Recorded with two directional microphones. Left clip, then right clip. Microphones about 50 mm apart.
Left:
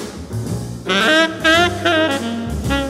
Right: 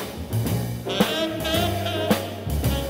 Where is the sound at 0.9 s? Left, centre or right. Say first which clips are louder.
Left 10 dB; left.